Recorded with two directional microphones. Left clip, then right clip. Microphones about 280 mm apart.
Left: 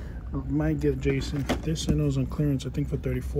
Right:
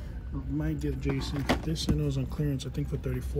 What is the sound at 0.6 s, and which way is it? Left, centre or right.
Speech, centre.